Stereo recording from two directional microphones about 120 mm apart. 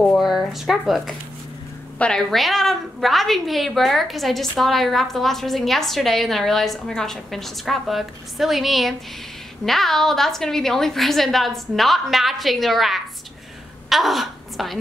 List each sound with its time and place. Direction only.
0.0 s a woman's voice: centre (ahead or behind)